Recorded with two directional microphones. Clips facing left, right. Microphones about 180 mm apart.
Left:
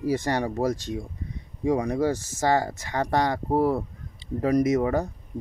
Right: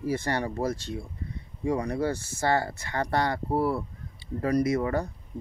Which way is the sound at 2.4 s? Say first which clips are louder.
Left 3 dB; 15° left (ahead or behind).